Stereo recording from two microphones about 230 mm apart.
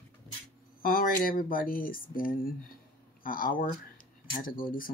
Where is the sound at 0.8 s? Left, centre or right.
Left.